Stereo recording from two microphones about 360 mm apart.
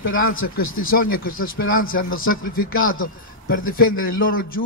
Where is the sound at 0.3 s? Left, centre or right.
Left.